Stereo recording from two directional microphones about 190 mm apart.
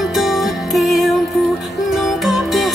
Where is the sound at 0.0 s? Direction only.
Centre (ahead or behind).